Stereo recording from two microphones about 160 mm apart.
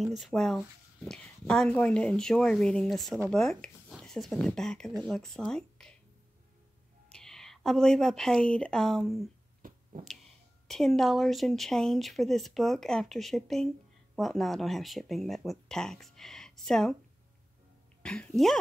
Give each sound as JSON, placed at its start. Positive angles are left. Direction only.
{"t": 0.0, "sound": "speech", "side_deg": 0}
{"t": 7.1, "sound": "a woman's voice", "side_deg": 5}
{"t": 9.6, "sound": "a sound", "side_deg": -60}
{"t": 10.7, "sound": "speech", "side_deg": 0}
{"t": 18.0, "sound": "speech", "side_deg": 5}